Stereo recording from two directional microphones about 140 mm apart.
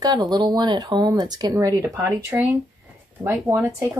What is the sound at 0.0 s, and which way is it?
Speech, 30° right (ahead or behind).